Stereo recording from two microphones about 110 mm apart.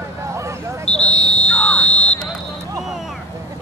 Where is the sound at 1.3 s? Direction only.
10° left (ahead or behind).